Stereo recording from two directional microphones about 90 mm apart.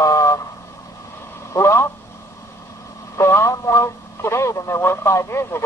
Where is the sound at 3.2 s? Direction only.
30° left (ahead or behind).